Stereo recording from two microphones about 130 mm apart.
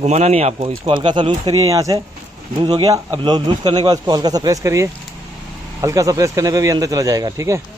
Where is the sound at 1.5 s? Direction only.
25° right (ahead or behind).